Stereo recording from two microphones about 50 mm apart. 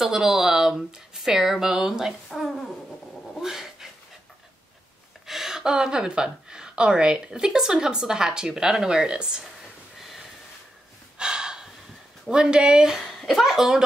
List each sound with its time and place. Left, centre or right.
0.0 s speech: centre
3.3 s cat: centre
5.2 s speech: centre
9.9 s a sound: centre
11.1 s gasp: centre
12.3 s speech: centre
13.0 s speech: centre